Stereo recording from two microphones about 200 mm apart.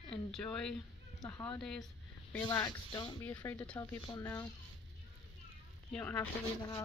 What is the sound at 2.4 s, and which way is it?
Speech, 20° left (ahead or behind).